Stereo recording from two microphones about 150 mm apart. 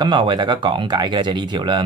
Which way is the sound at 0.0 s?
30° right (ahead or behind).